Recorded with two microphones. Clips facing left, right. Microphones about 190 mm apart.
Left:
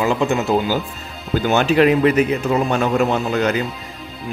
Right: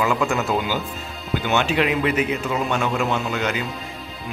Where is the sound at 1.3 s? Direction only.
40° left (ahead or behind).